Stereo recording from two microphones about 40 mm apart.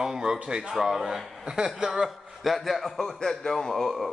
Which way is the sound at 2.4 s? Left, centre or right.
Centre.